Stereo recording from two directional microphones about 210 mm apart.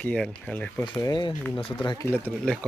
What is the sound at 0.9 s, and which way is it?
Speech, 20° left (ahead or behind).